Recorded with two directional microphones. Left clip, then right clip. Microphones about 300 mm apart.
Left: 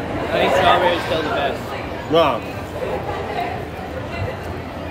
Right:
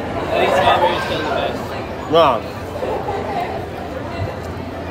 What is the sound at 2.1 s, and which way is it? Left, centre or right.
Speech, centre.